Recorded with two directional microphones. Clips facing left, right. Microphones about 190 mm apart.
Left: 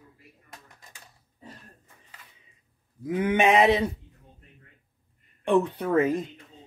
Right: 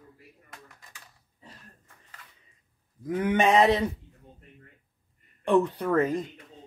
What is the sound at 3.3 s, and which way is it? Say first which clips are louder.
Speech: left 1 dB; 20° left (ahead or behind).